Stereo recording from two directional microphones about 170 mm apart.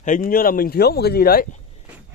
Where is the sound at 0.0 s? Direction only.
55° left (ahead or behind).